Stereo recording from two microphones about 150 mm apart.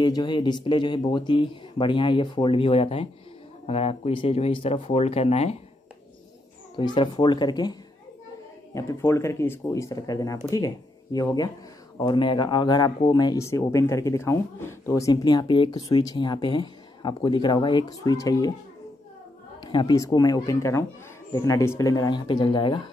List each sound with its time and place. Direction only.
0.0 s speech: 30° left (ahead or behind)
6.8 s speech: 30° left (ahead or behind)
8.7 s speech: 20° left (ahead or behind)
19.6 s speech: 30° left (ahead or behind)